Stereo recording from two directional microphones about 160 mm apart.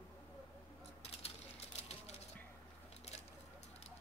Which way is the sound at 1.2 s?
40° left (ahead or behind).